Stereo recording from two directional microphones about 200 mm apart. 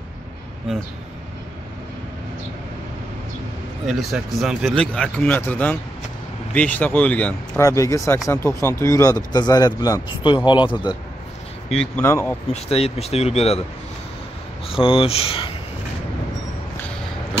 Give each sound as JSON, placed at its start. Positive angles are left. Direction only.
{"t": 3.8, "sound": "speech", "side_deg": 0}
{"t": 11.7, "sound": "speech", "side_deg": 5}
{"t": 12.6, "sound": "speech", "side_deg": 30}
{"t": 14.7, "sound": "speech", "side_deg": 25}